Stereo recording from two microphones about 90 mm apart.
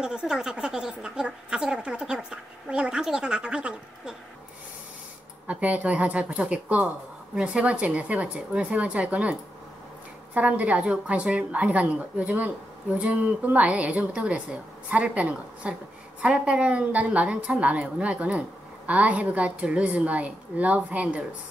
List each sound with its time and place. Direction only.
0.0 s a woman's voice: 10° right (ahead or behind)
5.5 s a woman's voice: 15° right (ahead or behind)